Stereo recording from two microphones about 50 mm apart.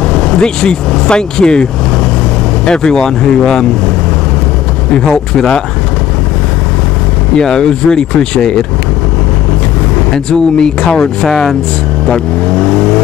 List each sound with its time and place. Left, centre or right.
0.1 s speech: centre
4.9 s speech: centre
7.3 s speech: centre
10.1 s speech: centre